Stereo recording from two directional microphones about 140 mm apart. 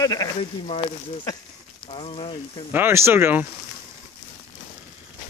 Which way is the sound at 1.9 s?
40° left (ahead or behind).